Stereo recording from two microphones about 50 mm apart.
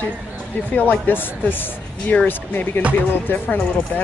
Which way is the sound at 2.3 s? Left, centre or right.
Left.